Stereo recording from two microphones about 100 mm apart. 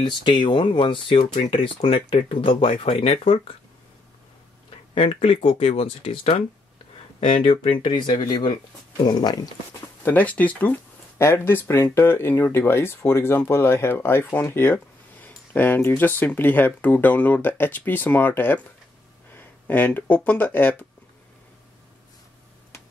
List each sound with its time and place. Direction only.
0.0 s speech: 50° left (ahead or behind); by 3.5 s 75° left (ahead or behind)
4.6 s speech: 80° left
7.2 s speech: 60° left (ahead or behind)
10.0 s speech: 15° left (ahead or behind)